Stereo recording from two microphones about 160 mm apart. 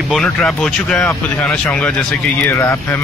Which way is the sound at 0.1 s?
Centre (ahead or behind).